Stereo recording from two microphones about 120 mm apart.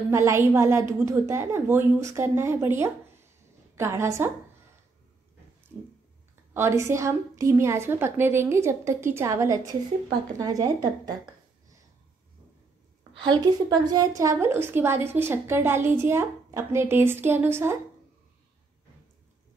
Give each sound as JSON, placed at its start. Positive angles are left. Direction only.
{"t": 0.1, "sound": "a woman's voice", "side_deg": -25}
{"t": 6.5, "sound": "a woman's voice", "side_deg": -20}
{"t": 13.2, "sound": "a woman's voice", "side_deg": -40}